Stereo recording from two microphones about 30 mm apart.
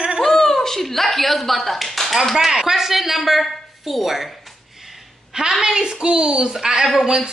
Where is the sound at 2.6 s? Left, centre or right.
Centre.